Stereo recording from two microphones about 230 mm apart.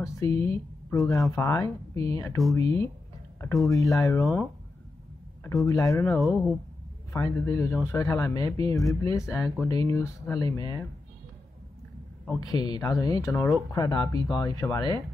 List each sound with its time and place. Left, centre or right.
0.0 s a man's voice: centre
5.7 s a man's voice: centre
6.0 s speech: centre
7.1 s a man's voice: centre
12.3 s a man's voice: centre